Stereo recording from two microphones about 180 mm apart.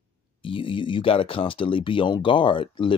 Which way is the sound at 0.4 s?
30° left (ahead or behind).